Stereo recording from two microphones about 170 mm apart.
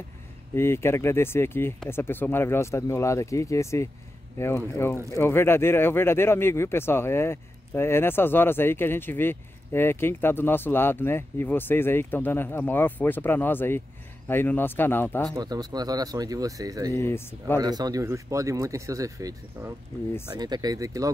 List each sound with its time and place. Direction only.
0.6 s speech: 15° left (ahead or behind)
15.3 s speech: 20° right (ahead or behind)
16.9 s speech: 15° left (ahead or behind)
17.6 s speech: 25° right (ahead or behind)